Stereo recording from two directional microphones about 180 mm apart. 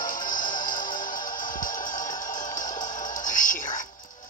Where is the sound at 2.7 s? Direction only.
20° left (ahead or behind).